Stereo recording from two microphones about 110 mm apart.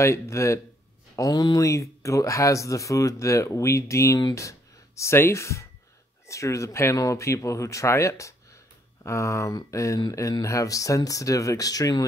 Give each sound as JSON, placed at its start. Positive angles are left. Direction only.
{"t": 0.0, "sound": "speech", "side_deg": 25}